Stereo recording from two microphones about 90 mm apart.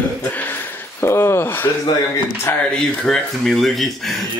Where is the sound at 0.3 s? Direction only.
20° left (ahead or behind).